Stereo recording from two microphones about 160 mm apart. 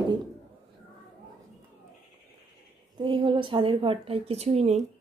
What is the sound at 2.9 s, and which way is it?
A woman's voice, 30° right (ahead or behind).